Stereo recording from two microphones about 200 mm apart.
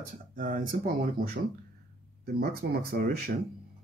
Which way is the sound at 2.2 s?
50° right (ahead or behind).